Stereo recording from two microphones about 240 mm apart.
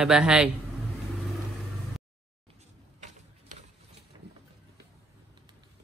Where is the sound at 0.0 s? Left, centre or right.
Centre.